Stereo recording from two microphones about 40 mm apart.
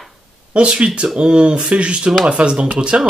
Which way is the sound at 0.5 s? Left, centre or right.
Right.